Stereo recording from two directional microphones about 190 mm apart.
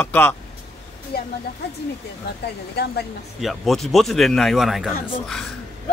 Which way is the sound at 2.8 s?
55° left (ahead or behind).